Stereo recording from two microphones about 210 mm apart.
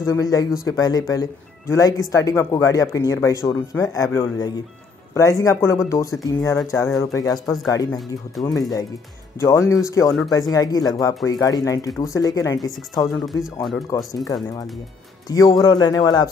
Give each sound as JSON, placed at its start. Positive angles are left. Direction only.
{"t": 0.0, "sound": "speech", "side_deg": 15}
{"t": 13.2, "sound": "speech", "side_deg": 0}
{"t": 13.9, "sound": "speech", "side_deg": 15}
{"t": 15.2, "sound": "speech", "side_deg": 20}